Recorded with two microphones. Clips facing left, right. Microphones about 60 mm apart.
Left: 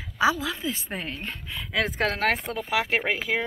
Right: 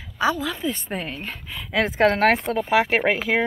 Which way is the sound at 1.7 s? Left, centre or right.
Right.